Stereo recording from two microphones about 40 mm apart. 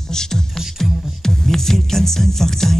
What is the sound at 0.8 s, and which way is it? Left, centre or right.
Music, centre.